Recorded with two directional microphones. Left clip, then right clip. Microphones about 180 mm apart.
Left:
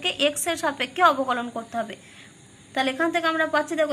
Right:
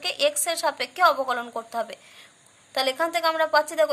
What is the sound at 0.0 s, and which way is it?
A woman's voice, 30° right (ahead or behind).